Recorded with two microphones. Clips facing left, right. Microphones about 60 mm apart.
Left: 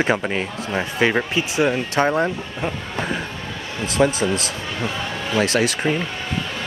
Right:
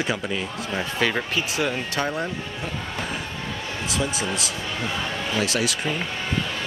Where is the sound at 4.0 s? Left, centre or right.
Left.